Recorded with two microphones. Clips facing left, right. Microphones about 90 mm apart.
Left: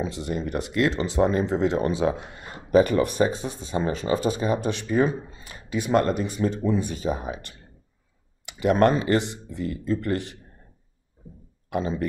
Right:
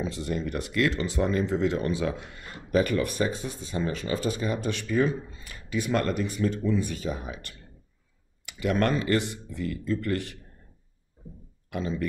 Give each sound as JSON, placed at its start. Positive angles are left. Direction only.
{"t": 0.0, "sound": "speech", "side_deg": 20}
{"t": 11.7, "sound": "speech", "side_deg": 25}